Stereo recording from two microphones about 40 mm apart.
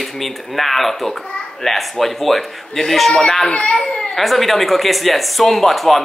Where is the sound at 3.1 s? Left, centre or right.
Centre.